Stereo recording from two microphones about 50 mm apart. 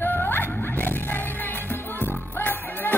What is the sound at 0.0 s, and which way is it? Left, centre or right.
Music, left.